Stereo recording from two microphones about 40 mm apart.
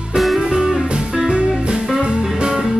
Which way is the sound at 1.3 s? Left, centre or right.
Right.